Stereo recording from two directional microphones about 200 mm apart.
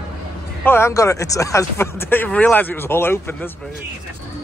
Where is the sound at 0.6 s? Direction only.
10° left (ahead or behind).